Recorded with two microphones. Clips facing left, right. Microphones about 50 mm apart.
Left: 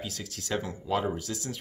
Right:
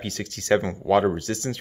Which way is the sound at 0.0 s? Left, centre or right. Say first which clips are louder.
Right 6 dB; right.